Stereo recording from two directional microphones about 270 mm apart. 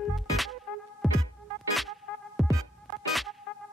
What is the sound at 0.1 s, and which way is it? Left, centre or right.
Music, centre.